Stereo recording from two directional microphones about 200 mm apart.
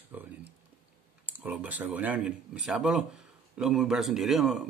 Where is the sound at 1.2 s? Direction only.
10° right (ahead or behind).